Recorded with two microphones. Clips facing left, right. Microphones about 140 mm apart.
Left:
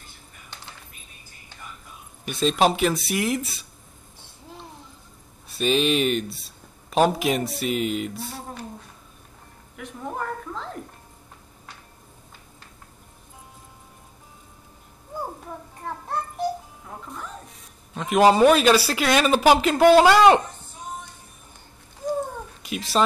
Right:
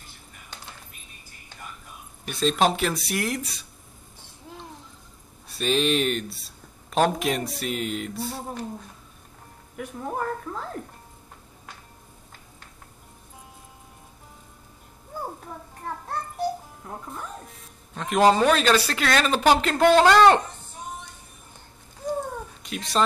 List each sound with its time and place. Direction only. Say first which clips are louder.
2.2 s speech: left 2 dB; 5° left (ahead or behind)
5.5 s speech: left 2 dB; centre (ahead or behind)
9.8 s a woman's voice: right 2 dB; 5° right (ahead or behind)
17.9 s speech: left 2 dB; 5° left (ahead or behind)
22.6 s speech: left 2 dB; 5° left (ahead or behind)